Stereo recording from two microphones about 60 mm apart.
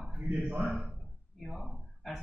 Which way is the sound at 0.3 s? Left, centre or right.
Right.